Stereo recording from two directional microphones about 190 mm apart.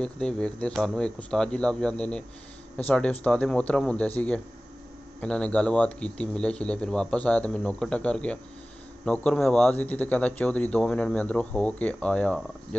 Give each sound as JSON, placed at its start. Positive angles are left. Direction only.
{"t": 0.0, "sound": "a man's voice", "side_deg": 5}
{"t": 5.2, "sound": "a man's voice", "side_deg": 5}